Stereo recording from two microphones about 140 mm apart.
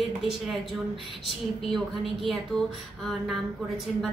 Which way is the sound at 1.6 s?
Centre (ahead or behind).